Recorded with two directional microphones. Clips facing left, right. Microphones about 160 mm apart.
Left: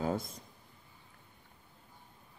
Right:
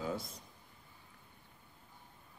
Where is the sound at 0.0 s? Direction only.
50° left (ahead or behind).